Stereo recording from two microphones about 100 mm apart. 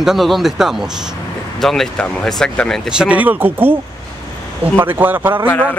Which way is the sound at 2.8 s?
10° right (ahead or behind).